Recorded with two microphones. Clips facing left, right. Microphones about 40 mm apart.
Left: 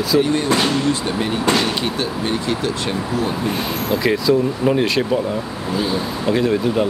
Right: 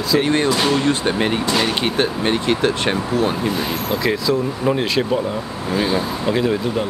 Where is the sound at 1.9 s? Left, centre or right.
Right.